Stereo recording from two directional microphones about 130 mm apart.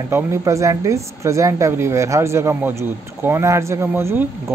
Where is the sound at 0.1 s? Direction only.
20° right (ahead or behind).